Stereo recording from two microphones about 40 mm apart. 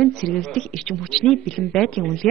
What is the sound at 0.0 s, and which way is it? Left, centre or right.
Speech, centre.